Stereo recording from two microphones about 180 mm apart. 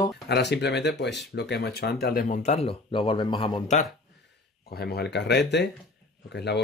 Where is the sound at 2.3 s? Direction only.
40° left (ahead or behind).